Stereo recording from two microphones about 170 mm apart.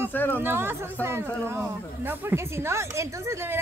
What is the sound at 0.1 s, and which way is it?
Speech, 10° left (ahead or behind).